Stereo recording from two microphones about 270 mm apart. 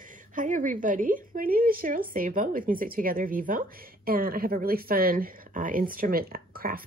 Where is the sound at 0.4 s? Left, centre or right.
Right.